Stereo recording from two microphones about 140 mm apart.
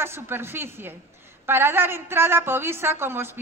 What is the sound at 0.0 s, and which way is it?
A woman's voice, 15° right (ahead or behind).